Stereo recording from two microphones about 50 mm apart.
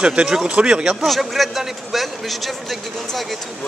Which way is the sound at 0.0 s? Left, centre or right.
Centre.